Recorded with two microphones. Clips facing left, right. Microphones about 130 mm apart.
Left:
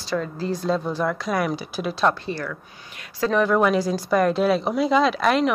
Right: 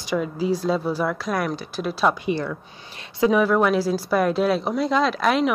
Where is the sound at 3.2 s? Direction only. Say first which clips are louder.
Right 1 dB; 10° right (ahead or behind).